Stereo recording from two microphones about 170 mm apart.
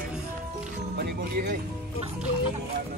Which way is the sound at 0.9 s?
65° right (ahead or behind).